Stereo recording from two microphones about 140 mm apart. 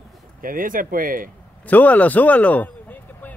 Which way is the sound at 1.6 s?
10° left (ahead or behind).